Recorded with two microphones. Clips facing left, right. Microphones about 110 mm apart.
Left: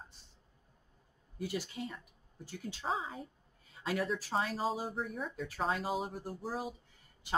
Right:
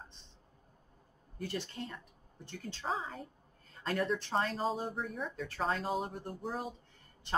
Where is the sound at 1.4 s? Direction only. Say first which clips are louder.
Left 1 dB; 10° left (ahead or behind).